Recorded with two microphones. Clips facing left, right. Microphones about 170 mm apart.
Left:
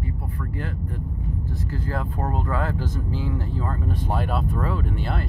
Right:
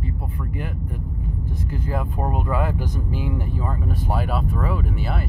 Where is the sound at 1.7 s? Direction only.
15° right (ahead or behind).